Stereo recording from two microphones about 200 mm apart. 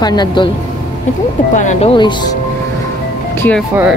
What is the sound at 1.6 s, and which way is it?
Speech, 35° left (ahead or behind).